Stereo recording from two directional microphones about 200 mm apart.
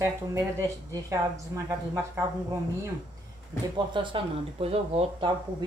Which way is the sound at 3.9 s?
25° right (ahead or behind).